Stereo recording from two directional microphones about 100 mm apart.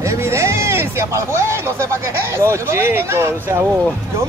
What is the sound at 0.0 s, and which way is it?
Speech, 30° right (ahead or behind).